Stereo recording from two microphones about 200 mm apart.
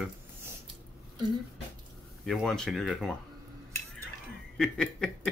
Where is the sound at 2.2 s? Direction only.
Centre (ahead or behind).